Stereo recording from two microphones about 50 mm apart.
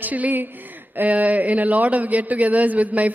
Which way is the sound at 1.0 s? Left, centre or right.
Right.